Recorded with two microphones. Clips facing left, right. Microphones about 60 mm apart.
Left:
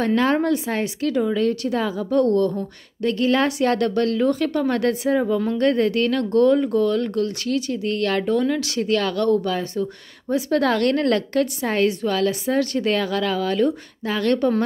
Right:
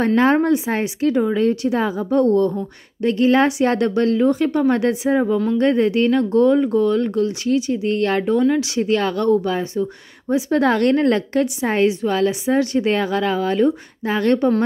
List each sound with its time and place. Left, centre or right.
0.0 s a woman's voice: right